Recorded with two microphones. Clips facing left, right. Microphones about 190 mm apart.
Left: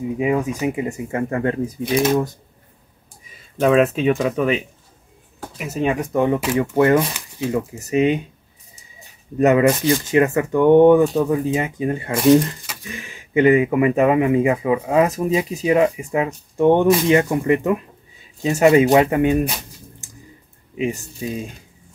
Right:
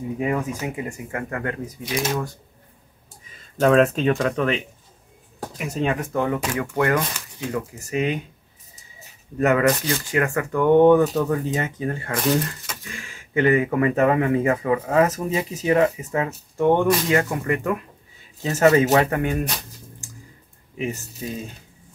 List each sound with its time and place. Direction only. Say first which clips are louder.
0.2 s speech: left 5 dB; 15° left (ahead or behind); by 1.9 s 30° left (ahead or behind)
3.5 s speech: left 1 dB; 5° left (ahead or behind)
6.2 s speech: left 6 dB; 25° left (ahead or behind)
9.4 s speech: left 4 dB; 20° left (ahead or behind)
20.7 s speech: left 5 dB; 15° left (ahead or behind)